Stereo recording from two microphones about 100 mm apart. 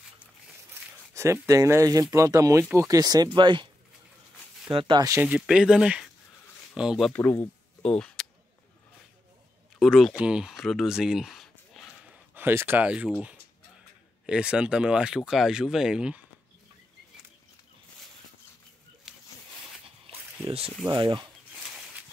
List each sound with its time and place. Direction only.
1.1 s speech: 30° right (ahead or behind)
3.3 s speech: 50° right (ahead or behind)
4.7 s speech: 55° right (ahead or behind)
5.2 s speech: 10° right (ahead or behind)
7.1 s speech: 20° left (ahead or behind)
7.8 s music: 10° left (ahead or behind)
9.8 s speech: centre (ahead or behind)
12.0 s a sound: 20° right (ahead or behind)
14.2 s speech: 10° right (ahead or behind)
19.1 s a sound: 5° right (ahead or behind)
20.9 s speech: 50° right (ahead or behind)